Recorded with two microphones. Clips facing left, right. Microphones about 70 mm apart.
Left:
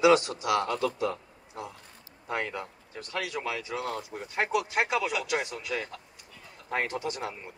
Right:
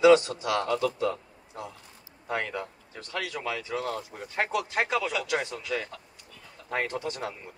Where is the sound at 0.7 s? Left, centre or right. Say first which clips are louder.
Right 2 dB; left.